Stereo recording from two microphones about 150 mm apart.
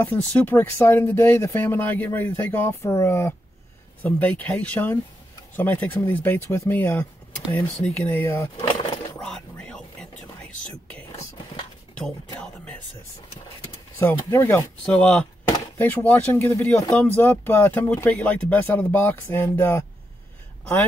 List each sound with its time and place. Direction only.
0.0 s speech: 10° left (ahead or behind)
9.2 s a sound: 5° left (ahead or behind)
10.9 s whispering: 10° left (ahead or behind)
13.9 s speech: 15° left (ahead or behind)
14.9 s speech: 5° left (ahead or behind)